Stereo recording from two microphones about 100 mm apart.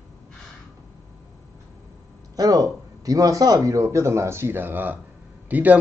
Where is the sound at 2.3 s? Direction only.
35° right (ahead or behind).